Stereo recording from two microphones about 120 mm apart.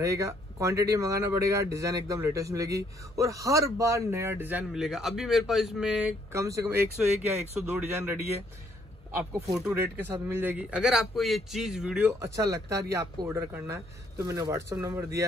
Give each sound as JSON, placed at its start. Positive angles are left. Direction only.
{"t": 0.0, "sound": "speech", "side_deg": -25}
{"t": 4.7, "sound": "a man's voice", "side_deg": -5}
{"t": 6.3, "sound": "speech", "side_deg": -25}
{"t": 9.9, "sound": "a man's voice", "side_deg": -20}
{"t": 12.1, "sound": "speech", "side_deg": -25}